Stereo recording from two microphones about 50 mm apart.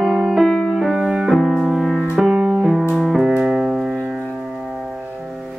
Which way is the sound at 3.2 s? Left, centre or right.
Centre.